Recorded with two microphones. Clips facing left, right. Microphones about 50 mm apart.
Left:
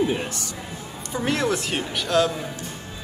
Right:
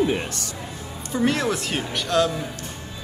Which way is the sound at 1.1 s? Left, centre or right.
Centre.